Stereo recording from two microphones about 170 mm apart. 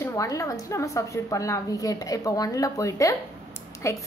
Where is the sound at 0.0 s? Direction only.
20° left (ahead or behind).